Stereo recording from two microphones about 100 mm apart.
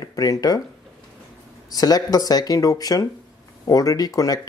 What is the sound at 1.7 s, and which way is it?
Speech, 40° left (ahead or behind).